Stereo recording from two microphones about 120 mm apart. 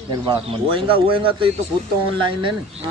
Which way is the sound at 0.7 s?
50° right (ahead or behind).